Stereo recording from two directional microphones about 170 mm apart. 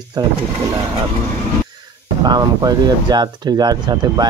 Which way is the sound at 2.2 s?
25° right (ahead or behind).